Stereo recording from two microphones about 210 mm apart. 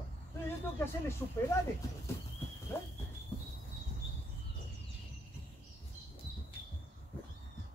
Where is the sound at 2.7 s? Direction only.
10° left (ahead or behind).